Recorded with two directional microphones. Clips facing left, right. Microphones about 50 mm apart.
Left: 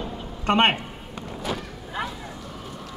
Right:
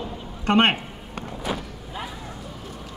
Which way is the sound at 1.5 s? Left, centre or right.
Centre.